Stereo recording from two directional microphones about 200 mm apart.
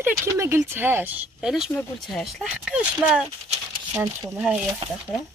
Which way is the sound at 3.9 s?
15° right (ahead or behind).